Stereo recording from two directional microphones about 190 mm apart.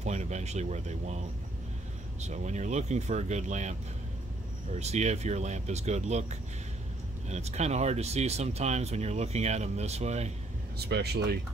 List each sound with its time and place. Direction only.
0.0 s speech: 35° right (ahead or behind)
2.2 s speech: 35° right (ahead or behind)
4.7 s speech: 35° right (ahead or behind)
7.2 s speech: 35° right (ahead or behind)
10.8 s speech: 60° right (ahead or behind)